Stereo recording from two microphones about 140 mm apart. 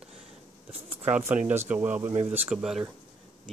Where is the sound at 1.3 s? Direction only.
15° right (ahead or behind).